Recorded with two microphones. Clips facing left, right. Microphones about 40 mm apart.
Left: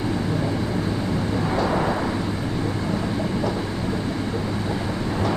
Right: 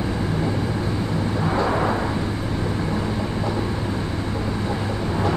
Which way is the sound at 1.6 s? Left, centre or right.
Centre.